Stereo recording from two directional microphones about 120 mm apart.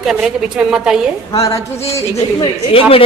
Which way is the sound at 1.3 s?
30° left (ahead or behind).